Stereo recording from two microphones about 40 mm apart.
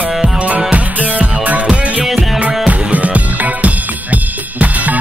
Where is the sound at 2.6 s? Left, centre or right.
Right.